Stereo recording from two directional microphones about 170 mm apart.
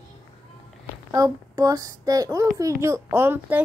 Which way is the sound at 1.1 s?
20° right (ahead or behind).